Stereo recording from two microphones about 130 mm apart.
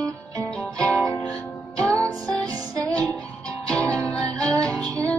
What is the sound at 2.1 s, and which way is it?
Music, 25° right (ahead or behind).